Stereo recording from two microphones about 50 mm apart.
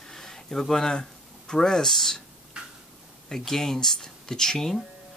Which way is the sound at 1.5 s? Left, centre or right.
Centre.